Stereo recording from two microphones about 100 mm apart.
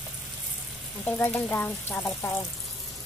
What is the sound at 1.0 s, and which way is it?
Speech, 20° left (ahead or behind).